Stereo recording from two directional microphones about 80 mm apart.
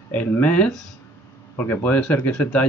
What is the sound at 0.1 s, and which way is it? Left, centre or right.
Speech, centre.